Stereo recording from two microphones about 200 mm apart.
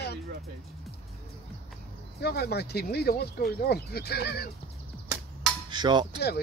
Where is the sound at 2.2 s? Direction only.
55° left (ahead or behind).